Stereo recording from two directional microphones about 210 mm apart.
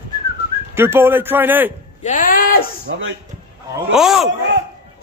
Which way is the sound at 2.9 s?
60° right (ahead or behind).